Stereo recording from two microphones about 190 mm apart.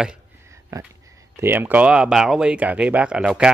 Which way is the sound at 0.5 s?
15° right (ahead or behind).